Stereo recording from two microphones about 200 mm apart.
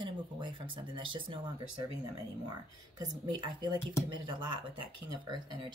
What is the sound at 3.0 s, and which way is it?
Speech, 20° right (ahead or behind).